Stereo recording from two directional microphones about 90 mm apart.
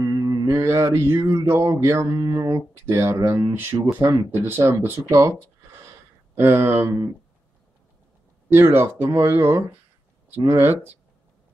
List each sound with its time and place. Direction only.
0.0 s mantra: 40° right (ahead or behind)
5.8 s a sound: 30° right (ahead or behind)
8.5 s speech: 25° right (ahead or behind)